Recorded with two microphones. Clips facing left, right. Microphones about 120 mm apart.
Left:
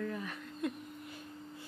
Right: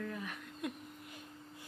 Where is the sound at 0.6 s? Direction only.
10° right (ahead or behind).